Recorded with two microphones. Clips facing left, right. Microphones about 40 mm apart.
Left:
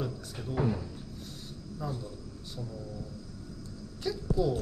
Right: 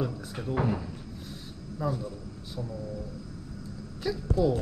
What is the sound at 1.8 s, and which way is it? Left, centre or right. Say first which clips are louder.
Speech: right 6 dB; centre.